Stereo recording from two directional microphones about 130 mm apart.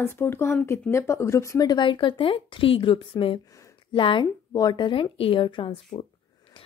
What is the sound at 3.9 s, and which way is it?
A woman's voice, 40° left (ahead or behind).